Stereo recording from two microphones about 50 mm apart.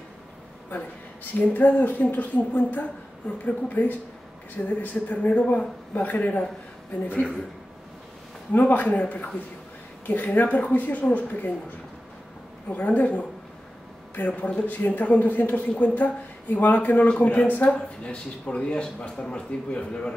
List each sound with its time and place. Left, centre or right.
1.4 s a woman's voice: left
5.4 s speech: centre
5.9 s a woman's voice: left
8.5 s a woman's voice: left
12.6 s a woman's voice: left